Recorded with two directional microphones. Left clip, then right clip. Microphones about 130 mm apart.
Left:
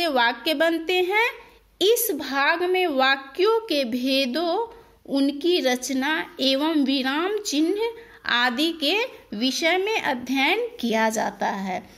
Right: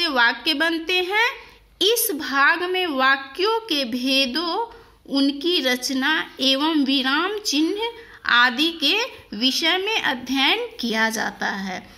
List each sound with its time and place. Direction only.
0.0 s a woman's voice: 25° left (ahead or behind)
8.7 s a woman's voice: 25° left (ahead or behind)